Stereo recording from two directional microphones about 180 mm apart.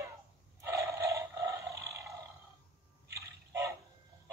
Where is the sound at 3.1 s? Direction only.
15° right (ahead or behind).